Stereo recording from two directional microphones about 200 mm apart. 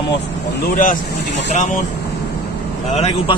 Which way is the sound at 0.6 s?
40° left (ahead or behind).